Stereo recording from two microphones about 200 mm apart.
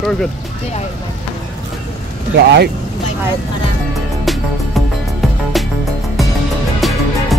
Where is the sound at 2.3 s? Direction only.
55° right (ahead or behind).